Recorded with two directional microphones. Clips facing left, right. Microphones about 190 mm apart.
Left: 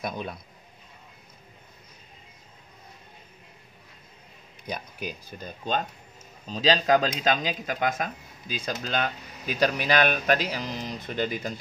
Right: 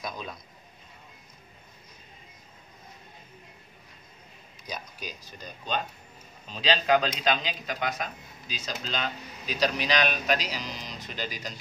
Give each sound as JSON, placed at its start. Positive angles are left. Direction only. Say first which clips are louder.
{"t": 0.0, "sound": "speech", "louder": "left 4 dB", "side_deg": 60}
{"t": 4.6, "sound": "speech", "louder": "left 5 dB", "side_deg": 55}
{"t": 6.4, "sound": "speech", "louder": "left 4 dB", "side_deg": 40}